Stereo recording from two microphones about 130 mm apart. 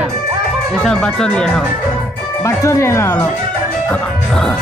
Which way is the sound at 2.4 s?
20° left (ahead or behind).